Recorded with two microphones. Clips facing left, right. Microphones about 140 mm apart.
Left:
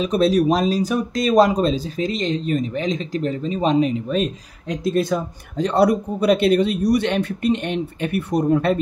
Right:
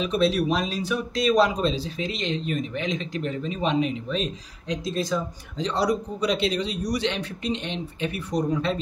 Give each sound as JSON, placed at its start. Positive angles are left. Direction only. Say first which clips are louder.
{"t": 0.0, "sound": "speech", "louder": "left 6 dB", "side_deg": 40}
{"t": 4.2, "sound": "speech", "louder": "left 7 dB", "side_deg": 55}